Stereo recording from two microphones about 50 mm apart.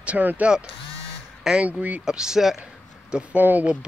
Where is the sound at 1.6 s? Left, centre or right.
Right.